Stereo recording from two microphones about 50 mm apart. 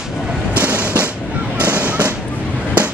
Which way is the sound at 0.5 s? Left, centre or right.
Right.